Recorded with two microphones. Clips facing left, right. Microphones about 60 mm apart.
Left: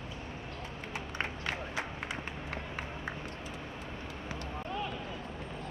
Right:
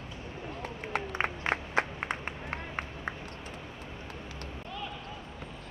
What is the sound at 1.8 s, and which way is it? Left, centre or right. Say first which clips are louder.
Clapping: right 11 dB; right.